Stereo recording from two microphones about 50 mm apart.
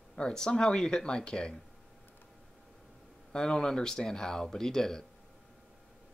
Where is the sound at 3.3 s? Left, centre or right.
Centre.